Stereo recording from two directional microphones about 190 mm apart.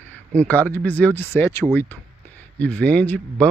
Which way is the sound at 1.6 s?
15° right (ahead or behind).